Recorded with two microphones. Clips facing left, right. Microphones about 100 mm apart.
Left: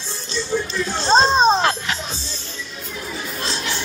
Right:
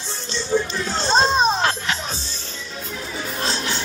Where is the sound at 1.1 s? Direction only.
30° left (ahead or behind).